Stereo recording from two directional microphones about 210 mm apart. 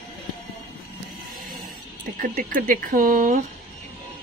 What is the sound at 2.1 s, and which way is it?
Speech, 40° right (ahead or behind).